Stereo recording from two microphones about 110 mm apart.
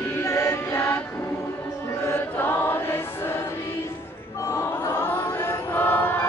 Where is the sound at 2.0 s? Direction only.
20° left (ahead or behind).